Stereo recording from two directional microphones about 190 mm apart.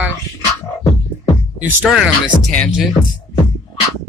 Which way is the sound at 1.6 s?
5° right (ahead or behind).